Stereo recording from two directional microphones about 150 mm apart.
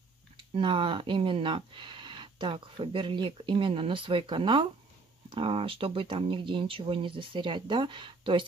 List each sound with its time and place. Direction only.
0.6 s speech: 35° right (ahead or behind)